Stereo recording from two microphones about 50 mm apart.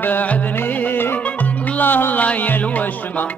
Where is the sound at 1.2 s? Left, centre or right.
Left.